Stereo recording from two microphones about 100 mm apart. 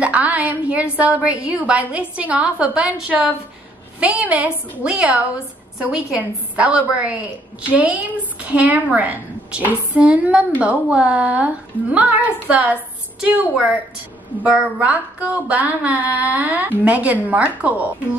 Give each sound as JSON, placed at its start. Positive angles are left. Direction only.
{"t": 0.0, "sound": "a woman's voice", "side_deg": -15}